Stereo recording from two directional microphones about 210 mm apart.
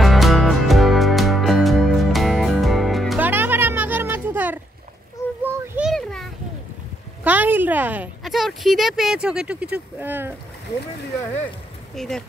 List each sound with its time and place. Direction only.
0.0 s music: centre (ahead or behind)
5.4 s a sound: 5° right (ahead or behind)
7.2 s speech: 10° right (ahead or behind)
11.9 s speech: centre (ahead or behind)